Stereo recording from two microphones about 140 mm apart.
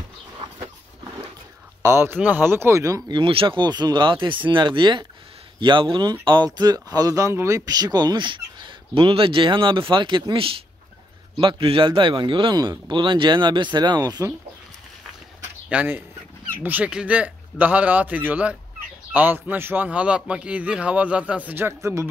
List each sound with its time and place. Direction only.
1.8 s a man's voice: 20° right (ahead or behind)
3.1 s speech: 40° right (ahead or behind)
15.7 s a man's voice: 10° right (ahead or behind)